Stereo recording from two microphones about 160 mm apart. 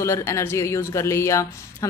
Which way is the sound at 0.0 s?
15° left (ahead or behind).